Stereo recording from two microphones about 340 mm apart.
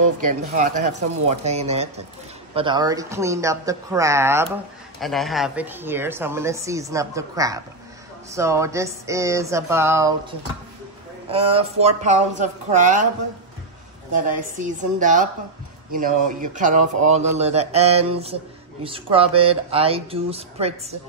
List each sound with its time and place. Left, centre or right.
0.2 s speech: right
11.2 s speech: centre
14.1 s speech: right